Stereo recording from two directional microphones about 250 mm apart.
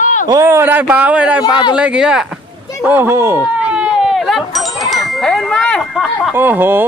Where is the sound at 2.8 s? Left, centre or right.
Centre.